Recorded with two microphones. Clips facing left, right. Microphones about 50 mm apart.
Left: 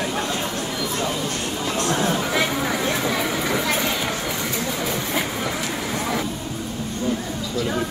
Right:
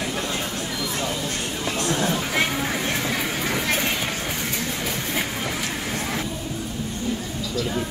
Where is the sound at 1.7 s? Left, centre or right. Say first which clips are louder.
Left 2 dB; left.